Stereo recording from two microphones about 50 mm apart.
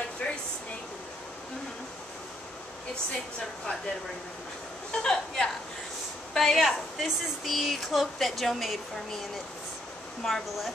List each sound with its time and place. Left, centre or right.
0.2 s a sound: centre
5.0 s a woman's voice: centre
10.2 s speech: centre